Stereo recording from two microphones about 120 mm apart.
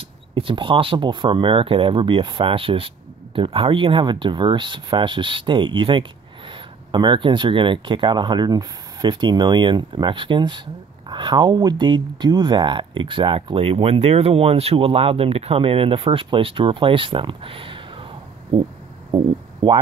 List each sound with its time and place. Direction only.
0.3 s speech: 45° right (ahead or behind)